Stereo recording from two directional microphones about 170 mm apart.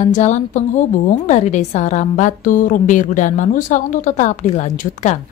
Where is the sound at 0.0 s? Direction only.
45° left (ahead or behind).